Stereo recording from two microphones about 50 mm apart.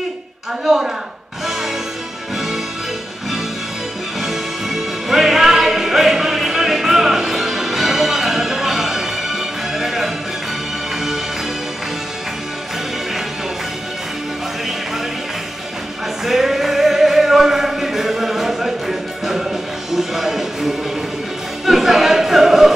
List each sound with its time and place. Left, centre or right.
1.4 s music: centre
4.2 s music: centre
16.3 s music: centre
21.6 s a sound: centre